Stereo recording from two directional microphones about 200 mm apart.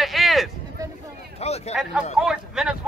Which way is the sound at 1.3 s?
30° left (ahead or behind).